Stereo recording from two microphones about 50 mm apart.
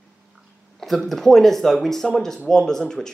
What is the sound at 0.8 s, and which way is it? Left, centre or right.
Speech, centre.